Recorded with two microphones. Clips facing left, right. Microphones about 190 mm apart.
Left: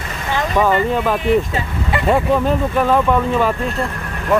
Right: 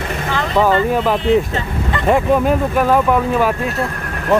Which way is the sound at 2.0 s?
10° right (ahead or behind).